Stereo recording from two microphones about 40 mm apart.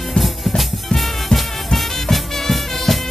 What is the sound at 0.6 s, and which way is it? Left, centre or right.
Music, centre.